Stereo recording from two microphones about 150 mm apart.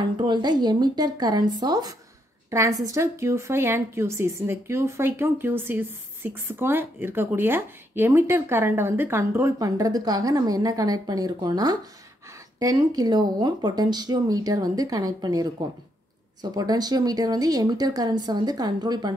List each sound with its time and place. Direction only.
0.2 s a woman's voice: 30° right (ahead or behind)